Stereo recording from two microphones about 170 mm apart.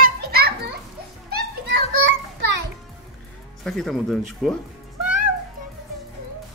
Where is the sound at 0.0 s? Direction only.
65° right (ahead or behind).